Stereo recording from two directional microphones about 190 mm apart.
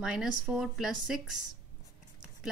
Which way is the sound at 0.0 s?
5° right (ahead or behind).